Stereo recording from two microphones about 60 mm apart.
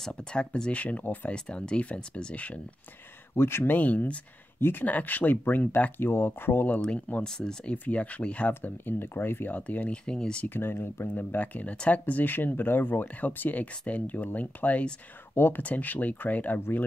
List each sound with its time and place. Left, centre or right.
0.1 s speech: centre
1.3 s speech: centre
3.3 s speech: left
3.7 s speech: left
4.6 s speech: left
4.8 s speech: left
6.9 s speech: left
7.7 s speech: left
9.6 s speech: left
10.0 s speech: centre
10.4 s speech: left
15.3 s speech: left